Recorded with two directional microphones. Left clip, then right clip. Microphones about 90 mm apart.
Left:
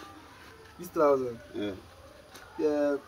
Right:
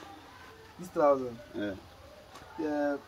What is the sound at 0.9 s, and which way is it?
Speech, 25° right (ahead or behind).